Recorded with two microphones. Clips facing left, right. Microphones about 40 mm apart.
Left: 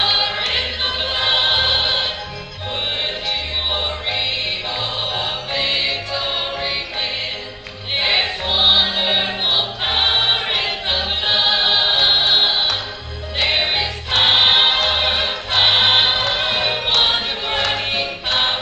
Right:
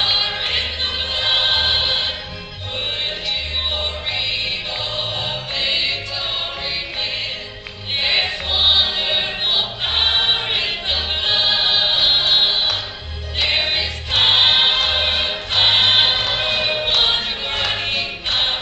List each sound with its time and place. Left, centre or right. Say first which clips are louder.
1.3 s music: even; centre
5.1 s music: left 2 dB; centre
8.0 s music: left 1 dB; centre
14.1 s choir: left 1 dB; centre
14.8 s music: left 1 dB; centre